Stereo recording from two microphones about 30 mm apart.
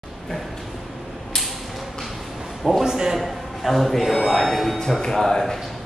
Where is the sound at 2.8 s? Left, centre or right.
Right.